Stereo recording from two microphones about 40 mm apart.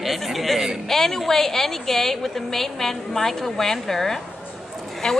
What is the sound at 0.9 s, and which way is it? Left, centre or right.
A woman's voice, centre.